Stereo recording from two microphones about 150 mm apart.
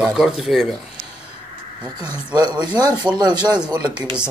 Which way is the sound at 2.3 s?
30° right (ahead or behind).